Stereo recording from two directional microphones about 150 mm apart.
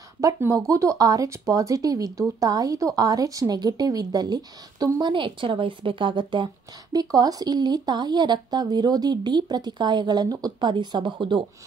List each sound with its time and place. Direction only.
0.2 s speech: 20° right (ahead or behind)